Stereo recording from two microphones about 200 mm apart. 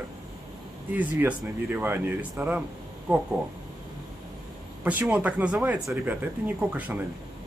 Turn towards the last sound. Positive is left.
turn(degrees=-10)  # may be behind; listen again after turning